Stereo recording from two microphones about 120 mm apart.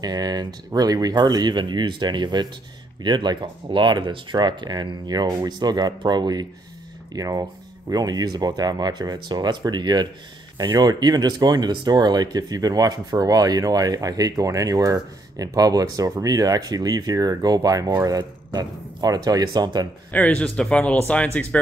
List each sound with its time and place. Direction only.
0.0 s speech: 35° right (ahead or behind)
20.1 s speech: 10° left (ahead or behind)